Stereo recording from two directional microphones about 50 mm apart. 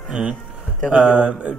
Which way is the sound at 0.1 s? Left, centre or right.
Centre.